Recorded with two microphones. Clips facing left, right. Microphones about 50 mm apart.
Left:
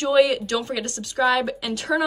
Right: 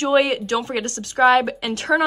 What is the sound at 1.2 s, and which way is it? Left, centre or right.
Speech, right.